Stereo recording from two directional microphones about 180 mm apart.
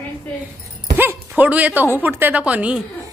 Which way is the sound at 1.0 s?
10° right (ahead or behind).